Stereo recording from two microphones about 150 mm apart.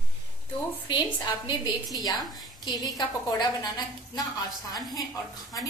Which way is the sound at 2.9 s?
25° left (ahead or behind).